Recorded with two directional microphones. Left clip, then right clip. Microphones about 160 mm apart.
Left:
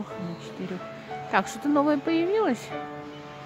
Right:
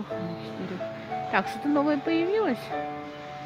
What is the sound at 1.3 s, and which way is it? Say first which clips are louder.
Speech: left 2 dB; 15° left (ahead or behind).